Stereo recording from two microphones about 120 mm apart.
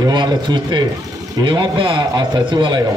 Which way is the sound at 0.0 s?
35° right (ahead or behind).